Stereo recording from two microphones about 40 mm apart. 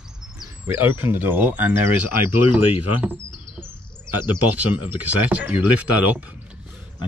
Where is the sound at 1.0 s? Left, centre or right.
Right.